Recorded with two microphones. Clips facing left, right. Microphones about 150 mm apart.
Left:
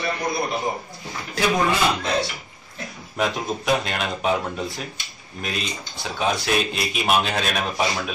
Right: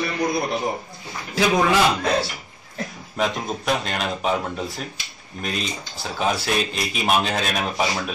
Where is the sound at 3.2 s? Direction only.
Centre (ahead or behind).